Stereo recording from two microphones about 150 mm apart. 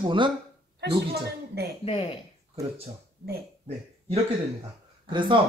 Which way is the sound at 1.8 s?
40° left (ahead or behind).